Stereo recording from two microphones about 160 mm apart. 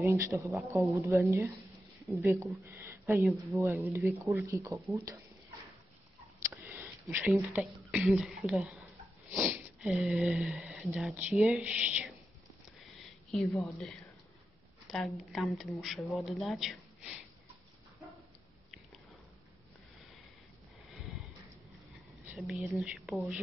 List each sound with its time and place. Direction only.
0.0 s speech: 15° right (ahead or behind)
12.9 s a sound: centre (ahead or behind)
14.9 s speech: centre (ahead or behind)
21.9 s speech: centre (ahead or behind)